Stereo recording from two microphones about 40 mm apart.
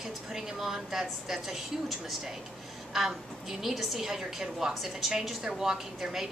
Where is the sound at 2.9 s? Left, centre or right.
Centre.